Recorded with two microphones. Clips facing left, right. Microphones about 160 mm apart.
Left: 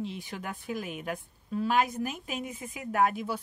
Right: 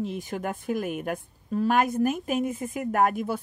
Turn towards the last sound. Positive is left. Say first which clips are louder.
# right 3 dB
turn(degrees=-50)  # may be behind; listen again after turning